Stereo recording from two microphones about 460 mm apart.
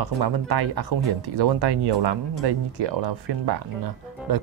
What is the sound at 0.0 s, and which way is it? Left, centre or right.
Speech, right.